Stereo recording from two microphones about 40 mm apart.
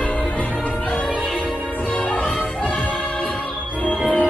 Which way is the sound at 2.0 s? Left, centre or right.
Left.